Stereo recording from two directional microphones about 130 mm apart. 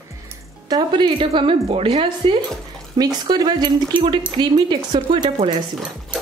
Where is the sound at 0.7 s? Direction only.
40° right (ahead or behind).